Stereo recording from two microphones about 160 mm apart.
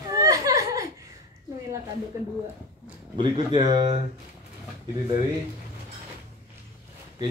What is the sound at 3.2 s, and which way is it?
Speech, 30° right (ahead or behind).